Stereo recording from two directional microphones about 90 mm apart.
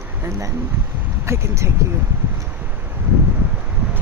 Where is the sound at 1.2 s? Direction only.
30° right (ahead or behind).